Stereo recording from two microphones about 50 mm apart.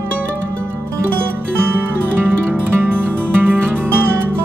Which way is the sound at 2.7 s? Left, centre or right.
Right.